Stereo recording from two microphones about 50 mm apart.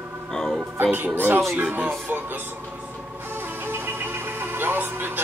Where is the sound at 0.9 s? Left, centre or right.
Right.